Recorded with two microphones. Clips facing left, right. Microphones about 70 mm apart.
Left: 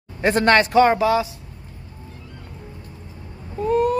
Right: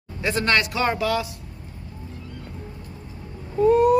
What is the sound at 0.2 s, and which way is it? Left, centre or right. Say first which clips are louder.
Speech: left 6 dB; left.